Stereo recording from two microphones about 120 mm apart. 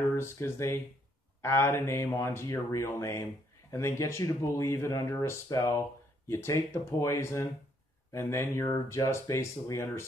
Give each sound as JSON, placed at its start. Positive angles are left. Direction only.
{"t": 0.1, "sound": "speech", "side_deg": 20}